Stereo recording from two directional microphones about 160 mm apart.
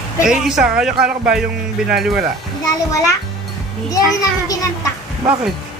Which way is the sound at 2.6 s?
20° left (ahead or behind).